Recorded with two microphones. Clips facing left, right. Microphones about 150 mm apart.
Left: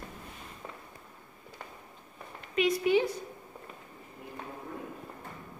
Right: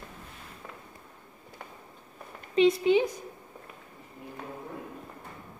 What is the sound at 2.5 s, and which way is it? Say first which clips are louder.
Speech: right 4 dB; 25° right (ahead or behind).